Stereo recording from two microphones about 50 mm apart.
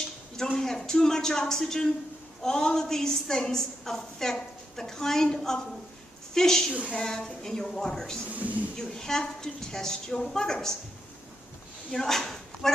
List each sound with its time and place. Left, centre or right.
0.6 s a woman's voice: centre
8.3 s speech: right
8.7 s a woman's voice: centre
11.9 s speech: centre